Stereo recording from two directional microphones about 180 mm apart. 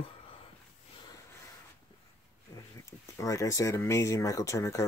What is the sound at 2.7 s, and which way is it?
Speech, 20° left (ahead or behind).